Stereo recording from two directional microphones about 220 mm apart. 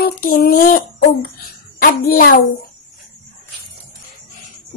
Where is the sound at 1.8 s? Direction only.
40° left (ahead or behind).